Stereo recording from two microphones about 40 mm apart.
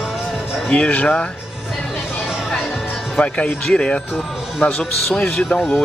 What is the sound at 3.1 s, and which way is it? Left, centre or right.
A man's voice, left.